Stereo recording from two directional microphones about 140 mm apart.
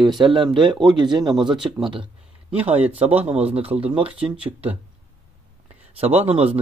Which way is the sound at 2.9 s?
50° right (ahead or behind).